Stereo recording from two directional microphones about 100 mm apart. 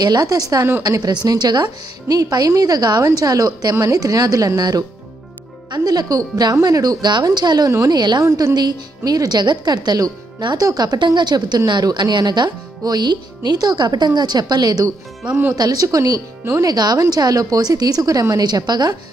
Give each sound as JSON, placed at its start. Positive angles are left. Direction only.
{"t": 0.0, "sound": "a woman's voice", "side_deg": -40}
{"t": 8.3, "sound": "a woman's voice", "side_deg": -30}
{"t": 8.5, "sound": "a woman's voice", "side_deg": -45}
{"t": 15.2, "sound": "speech", "side_deg": -15}
{"t": 15.5, "sound": "a woman's voice", "side_deg": -40}